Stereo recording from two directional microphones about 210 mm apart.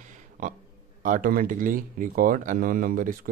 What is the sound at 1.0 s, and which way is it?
Speech, 40° right (ahead or behind).